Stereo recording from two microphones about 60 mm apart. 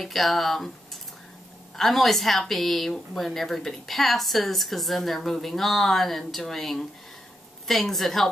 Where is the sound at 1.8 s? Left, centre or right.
Centre.